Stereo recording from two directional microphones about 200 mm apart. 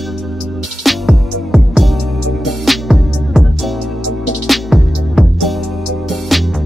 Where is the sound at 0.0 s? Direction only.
Centre (ahead or behind).